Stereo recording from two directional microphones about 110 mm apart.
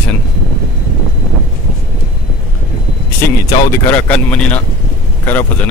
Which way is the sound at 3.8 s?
15° left (ahead or behind).